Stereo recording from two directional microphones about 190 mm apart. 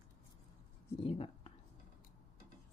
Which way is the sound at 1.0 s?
30° left (ahead or behind).